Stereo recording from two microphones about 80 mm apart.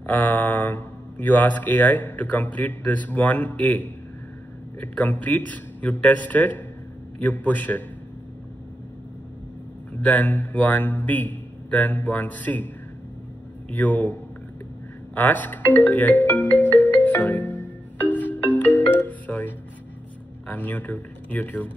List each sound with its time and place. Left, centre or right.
0.0 s speech: left
10.0 s speech: left
13.7 s speech: left
15.1 s music: left
20.4 s speech: left